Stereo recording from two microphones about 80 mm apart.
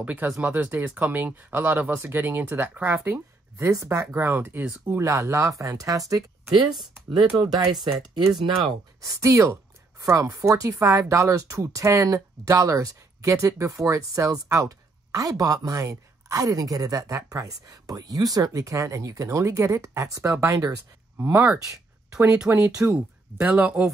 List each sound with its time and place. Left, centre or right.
0.0 s speech: right
6.5 s speech: right
9.0 s speech: right
21.2 s speech: right
21.5 s a sound: right
22.5 s speech: right